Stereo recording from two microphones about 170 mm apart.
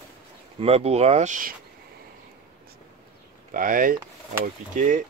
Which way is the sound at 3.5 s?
55° right (ahead or behind).